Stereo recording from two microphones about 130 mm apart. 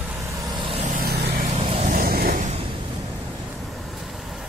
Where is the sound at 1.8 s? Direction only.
70° right (ahead or behind).